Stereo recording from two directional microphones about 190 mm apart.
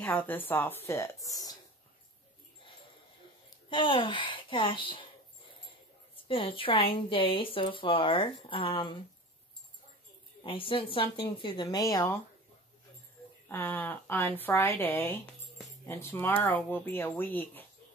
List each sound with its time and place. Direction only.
0.0 s a woman's voice: 10° left (ahead or behind)
3.4 s speech: 25° left (ahead or behind)
6.1 s speech: 30° left (ahead or behind)
10.4 s speech: 25° left (ahead or behind)
13.5 s a woman's voice: 10° left (ahead or behind)